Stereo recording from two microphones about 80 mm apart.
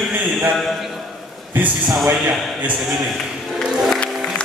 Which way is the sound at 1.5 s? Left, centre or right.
Right.